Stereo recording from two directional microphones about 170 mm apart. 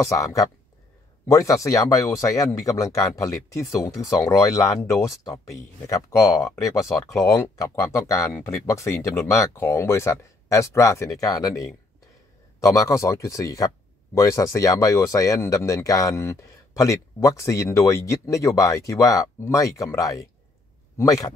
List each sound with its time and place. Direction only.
0.0 s speech: 20° left (ahead or behind)